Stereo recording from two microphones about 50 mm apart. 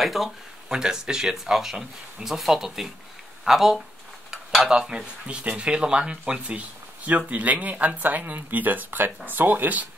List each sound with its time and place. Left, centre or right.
0.0 s speech: centre
0.7 s speech: centre
4.6 s speech: centre; by 9.8 s right